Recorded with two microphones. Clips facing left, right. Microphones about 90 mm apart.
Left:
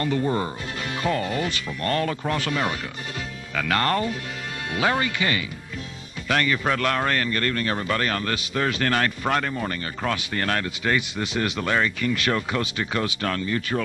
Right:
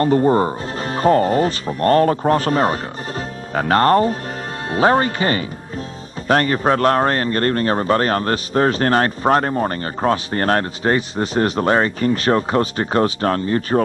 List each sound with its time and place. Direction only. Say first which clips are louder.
0.0 s speech: right 9 dB; 40° right (ahead or behind)